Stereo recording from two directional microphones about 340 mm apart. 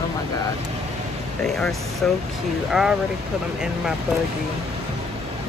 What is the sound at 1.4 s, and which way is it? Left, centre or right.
Speech, centre.